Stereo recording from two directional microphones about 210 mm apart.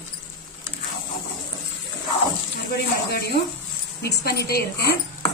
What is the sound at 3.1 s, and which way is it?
A woman's voice, 50° left (ahead or behind).